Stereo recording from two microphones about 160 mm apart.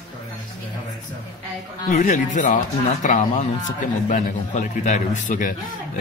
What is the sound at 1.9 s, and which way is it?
Speech, 50° left (ahead or behind).